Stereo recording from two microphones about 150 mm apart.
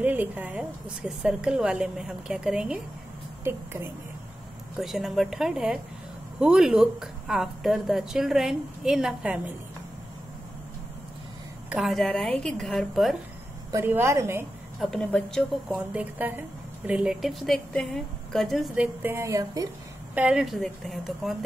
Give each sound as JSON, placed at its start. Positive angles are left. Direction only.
{"t": 0.0, "sound": "a woman's voice", "side_deg": -10}
{"t": 4.7, "sound": "a woman's voice", "side_deg": 0}
{"t": 11.7, "sound": "a woman's voice", "side_deg": 0}
{"t": 13.7, "sound": "a woman's voice", "side_deg": -15}
{"t": 14.8, "sound": "a woman's voice", "side_deg": 5}
{"t": 15.9, "sound": "a woman's voice", "side_deg": -10}
{"t": 19.0, "sound": "a woman's voice", "side_deg": -20}
{"t": 20.2, "sound": "a woman's voice", "side_deg": -5}